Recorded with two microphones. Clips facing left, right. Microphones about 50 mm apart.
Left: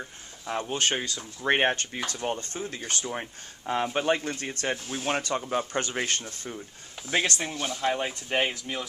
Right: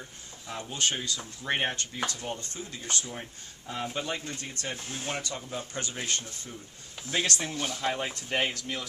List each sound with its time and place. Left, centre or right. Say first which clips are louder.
0.5 s speech: left 5 dB; left
3.1 s speech: left 6 dB; left
7.2 s speech: left 2 dB; centre